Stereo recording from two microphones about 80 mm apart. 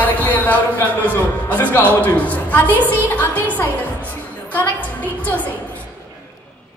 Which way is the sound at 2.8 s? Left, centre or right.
Left.